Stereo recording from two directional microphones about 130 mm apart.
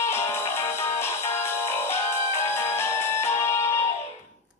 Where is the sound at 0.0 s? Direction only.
20° left (ahead or behind).